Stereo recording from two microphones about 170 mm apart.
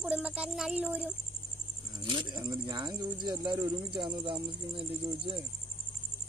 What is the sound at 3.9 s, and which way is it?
Speech, 30° right (ahead or behind).